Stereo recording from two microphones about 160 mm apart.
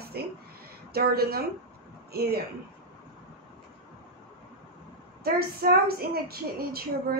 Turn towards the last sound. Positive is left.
turn(degrees=-70)  # may be behind; listen again after turning